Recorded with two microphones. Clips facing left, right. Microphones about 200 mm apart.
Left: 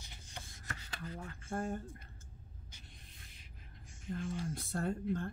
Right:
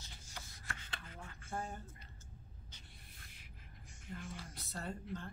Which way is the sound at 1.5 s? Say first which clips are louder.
Left 6 dB; 55° left (ahead or behind).